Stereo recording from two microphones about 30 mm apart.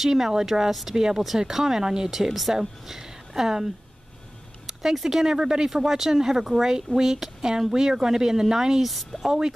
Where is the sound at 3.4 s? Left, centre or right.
Centre.